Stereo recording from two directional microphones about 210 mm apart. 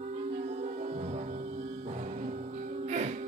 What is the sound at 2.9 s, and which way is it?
Music, 35° right (ahead or behind).